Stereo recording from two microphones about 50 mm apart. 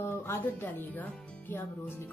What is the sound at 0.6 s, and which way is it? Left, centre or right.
Speech, left.